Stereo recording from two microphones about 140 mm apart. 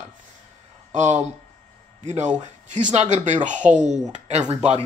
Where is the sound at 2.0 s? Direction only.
55° right (ahead or behind).